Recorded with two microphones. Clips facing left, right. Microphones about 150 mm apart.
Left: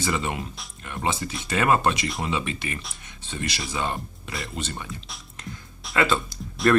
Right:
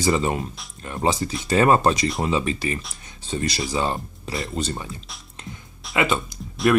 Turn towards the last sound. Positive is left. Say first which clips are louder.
# right 1 dB
turn(degrees=0)  # may be behind; listen again after turning